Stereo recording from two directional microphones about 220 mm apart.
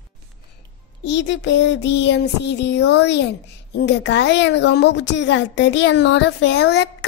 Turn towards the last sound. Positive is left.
turn(degrees=50)  # may be behind; listen again after turning